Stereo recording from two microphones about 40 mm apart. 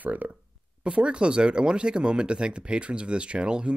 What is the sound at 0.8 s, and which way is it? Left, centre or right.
Speech, right.